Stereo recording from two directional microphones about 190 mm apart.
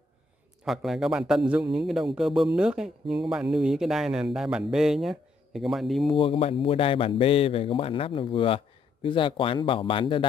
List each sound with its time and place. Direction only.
0.7 s speech: centre (ahead or behind)
6.0 s speech: 30° left (ahead or behind)